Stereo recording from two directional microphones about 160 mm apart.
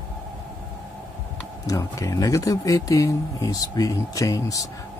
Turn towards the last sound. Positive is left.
turn(degrees=20)  # may be behind; listen again after turning